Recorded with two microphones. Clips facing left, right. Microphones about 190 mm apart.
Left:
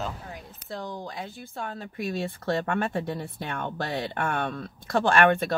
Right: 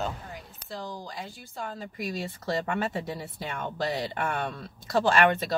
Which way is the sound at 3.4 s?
60° left (ahead or behind).